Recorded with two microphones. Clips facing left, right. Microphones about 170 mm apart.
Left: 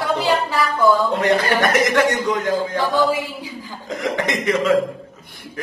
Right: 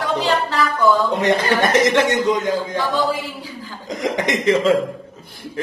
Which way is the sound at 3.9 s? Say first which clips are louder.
Right 1 dB; 20° right (ahead or behind).